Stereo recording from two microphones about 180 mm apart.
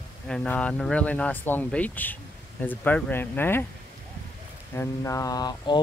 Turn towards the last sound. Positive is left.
turn(degrees=25)  # may be behind; listen again after turning